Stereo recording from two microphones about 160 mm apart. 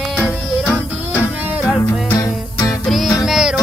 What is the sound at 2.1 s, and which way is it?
Music, 25° left (ahead or behind).